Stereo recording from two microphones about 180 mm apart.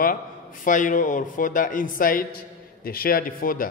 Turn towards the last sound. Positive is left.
turn(degrees=50)  # may be behind; listen again after turning